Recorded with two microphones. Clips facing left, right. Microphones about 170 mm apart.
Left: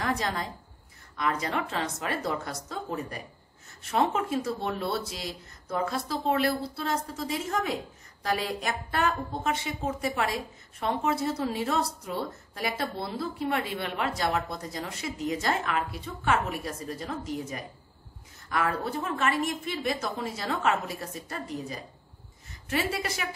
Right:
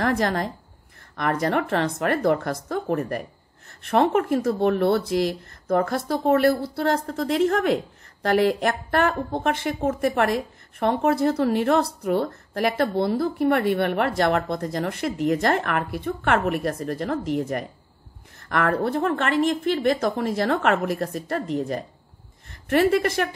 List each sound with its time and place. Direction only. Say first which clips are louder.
0.0 s a woman's voice: right 7 dB; 60° right (ahead or behind)
6.4 s a woman's voice: right 8 dB; 70° right (ahead or behind)